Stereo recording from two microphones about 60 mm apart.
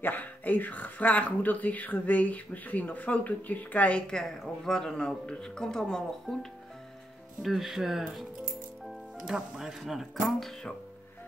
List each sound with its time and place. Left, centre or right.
0.0 s speech: left
4.1 s speech: centre
7.4 s speech: centre